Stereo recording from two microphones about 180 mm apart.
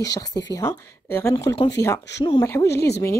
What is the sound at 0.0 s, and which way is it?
Speech, 20° left (ahead or behind).